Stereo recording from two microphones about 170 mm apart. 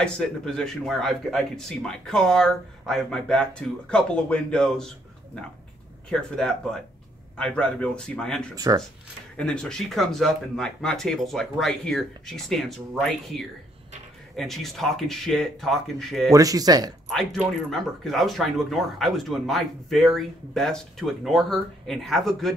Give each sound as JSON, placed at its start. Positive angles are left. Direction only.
{"t": 0.0, "sound": "speech", "side_deg": 5}
{"t": 6.0, "sound": "speech", "side_deg": 5}
{"t": 8.5, "sound": "speech", "side_deg": -20}
{"t": 9.4, "sound": "speech", "side_deg": 5}
{"t": 16.3, "sound": "speech", "side_deg": -20}
{"t": 17.1, "sound": "speech", "side_deg": 0}